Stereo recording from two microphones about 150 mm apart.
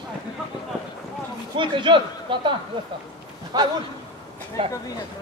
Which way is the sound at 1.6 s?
35° right (ahead or behind).